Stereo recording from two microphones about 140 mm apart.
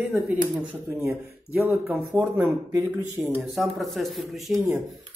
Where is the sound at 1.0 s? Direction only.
20° right (ahead or behind); by 4.6 s centre (ahead or behind).